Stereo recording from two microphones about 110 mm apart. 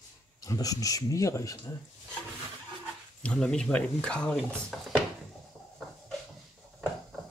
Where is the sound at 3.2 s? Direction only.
5° left (ahead or behind).